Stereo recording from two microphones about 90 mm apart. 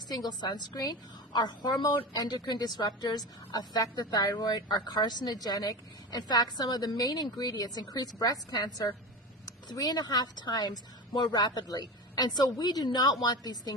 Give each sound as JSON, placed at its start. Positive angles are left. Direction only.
{"t": 0.1, "sound": "a woman's voice", "side_deg": 50}